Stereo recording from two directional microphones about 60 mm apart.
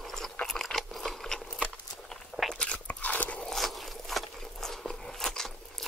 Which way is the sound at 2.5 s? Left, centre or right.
Centre.